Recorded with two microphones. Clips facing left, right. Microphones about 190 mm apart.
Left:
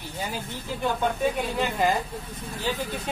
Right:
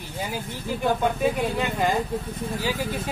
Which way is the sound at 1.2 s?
Centre (ahead or behind).